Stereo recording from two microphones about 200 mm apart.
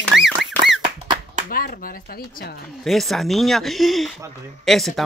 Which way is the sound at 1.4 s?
45° left (ahead or behind).